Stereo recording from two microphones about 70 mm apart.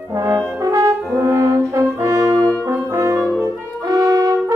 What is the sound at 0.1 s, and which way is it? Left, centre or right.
French horn, right.